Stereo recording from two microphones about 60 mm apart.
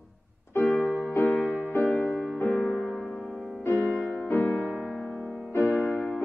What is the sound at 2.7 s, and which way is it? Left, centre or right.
Music, centre.